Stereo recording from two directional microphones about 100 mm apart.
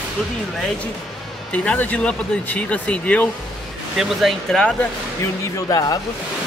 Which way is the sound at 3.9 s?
5° right (ahead or behind).